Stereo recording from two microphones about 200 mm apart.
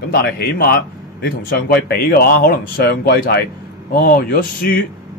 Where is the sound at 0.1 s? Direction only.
50° left (ahead or behind).